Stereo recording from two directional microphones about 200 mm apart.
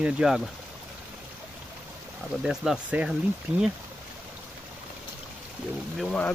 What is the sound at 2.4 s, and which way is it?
Speech, centre (ahead or behind).